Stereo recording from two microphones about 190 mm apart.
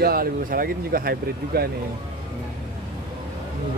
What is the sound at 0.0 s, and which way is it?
Speech, 50° right (ahead or behind).